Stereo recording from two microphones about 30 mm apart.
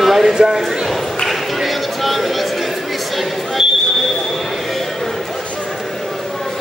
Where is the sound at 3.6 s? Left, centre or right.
Centre.